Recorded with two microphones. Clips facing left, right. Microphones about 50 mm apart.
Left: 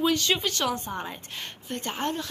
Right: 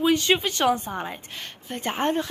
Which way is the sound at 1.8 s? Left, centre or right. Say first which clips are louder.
Right 6 dB; right.